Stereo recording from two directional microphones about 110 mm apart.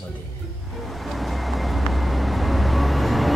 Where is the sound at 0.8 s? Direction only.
Centre (ahead or behind).